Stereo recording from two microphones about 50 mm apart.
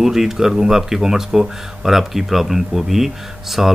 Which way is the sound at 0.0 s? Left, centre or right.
Centre.